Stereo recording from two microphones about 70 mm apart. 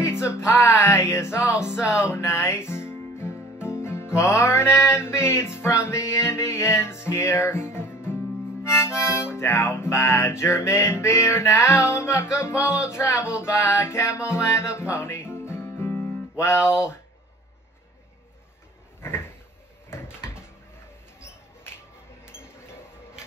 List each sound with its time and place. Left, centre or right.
0.0 s music: left
8.6 s harmonica: left
9.2 s music: left
13.0 s music: left
18.9 s a sound: left
22.2 s a sound: left